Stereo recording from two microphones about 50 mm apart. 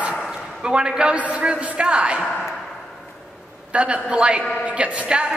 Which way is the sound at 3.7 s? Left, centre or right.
Right.